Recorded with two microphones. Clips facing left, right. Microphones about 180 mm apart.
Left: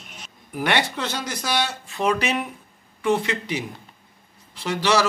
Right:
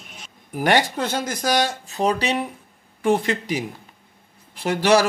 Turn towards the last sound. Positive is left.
turn(degrees=-50)  # may be behind; listen again after turning